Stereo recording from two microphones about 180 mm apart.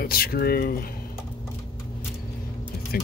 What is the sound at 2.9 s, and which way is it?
Speech, 55° left (ahead or behind).